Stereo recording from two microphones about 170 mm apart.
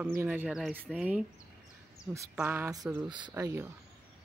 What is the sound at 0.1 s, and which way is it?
Speech, 15° right (ahead or behind).